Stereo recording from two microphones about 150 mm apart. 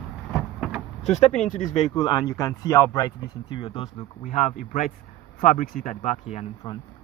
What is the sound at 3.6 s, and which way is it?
Speech, 40° left (ahead or behind).